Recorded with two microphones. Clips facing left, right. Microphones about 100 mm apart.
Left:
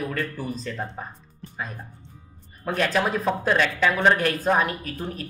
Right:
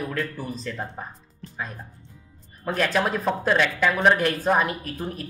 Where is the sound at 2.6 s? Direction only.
Centre (ahead or behind).